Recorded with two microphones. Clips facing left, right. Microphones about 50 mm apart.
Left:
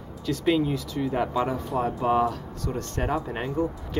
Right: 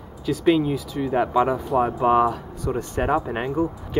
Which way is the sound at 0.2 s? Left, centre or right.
Centre.